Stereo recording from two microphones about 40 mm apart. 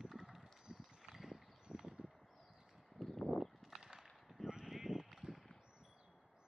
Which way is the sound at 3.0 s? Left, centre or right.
Centre.